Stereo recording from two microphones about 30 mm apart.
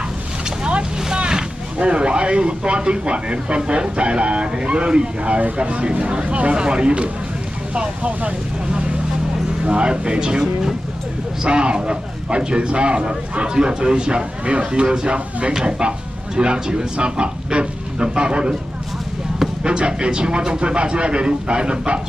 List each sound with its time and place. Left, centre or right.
1.0 s speech: right
6.5 s speech: right
9.7 s speech: right
19.6 s speech: right